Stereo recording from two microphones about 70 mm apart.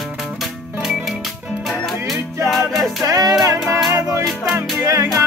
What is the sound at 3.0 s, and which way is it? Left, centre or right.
Music, right.